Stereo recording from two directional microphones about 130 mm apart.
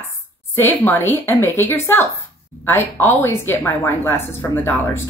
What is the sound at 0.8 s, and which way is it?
Speech, 15° left (ahead or behind).